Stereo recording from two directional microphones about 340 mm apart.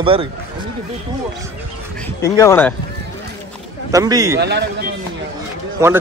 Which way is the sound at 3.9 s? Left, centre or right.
Centre.